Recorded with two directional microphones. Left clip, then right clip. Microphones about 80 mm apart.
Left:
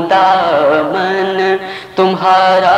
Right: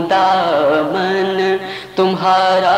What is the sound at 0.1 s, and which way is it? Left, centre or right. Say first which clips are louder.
Music: left 3 dB; left.